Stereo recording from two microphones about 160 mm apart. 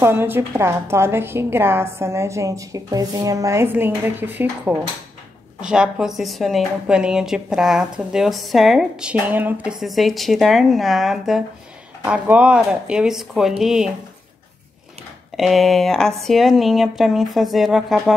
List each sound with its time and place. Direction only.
0.0 s a woman's voice: 15° right (ahead or behind)
15.3 s speech: centre (ahead or behind)